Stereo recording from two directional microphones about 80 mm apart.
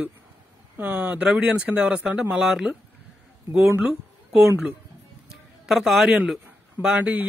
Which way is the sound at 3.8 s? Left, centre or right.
Centre.